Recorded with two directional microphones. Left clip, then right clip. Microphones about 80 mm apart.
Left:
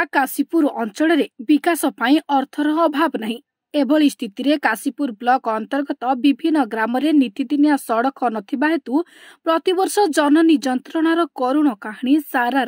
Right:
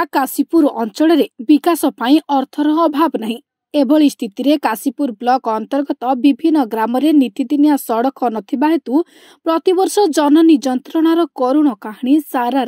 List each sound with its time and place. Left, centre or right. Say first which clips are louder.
0.0 s a woman's voice: right 2 dB; right